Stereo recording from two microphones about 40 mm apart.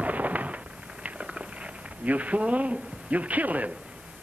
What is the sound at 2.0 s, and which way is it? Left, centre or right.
A man's voice, right.